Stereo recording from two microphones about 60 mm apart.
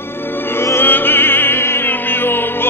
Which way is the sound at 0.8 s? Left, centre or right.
Left.